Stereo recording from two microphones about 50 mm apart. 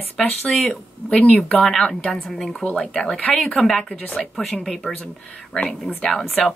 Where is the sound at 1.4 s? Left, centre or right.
Centre.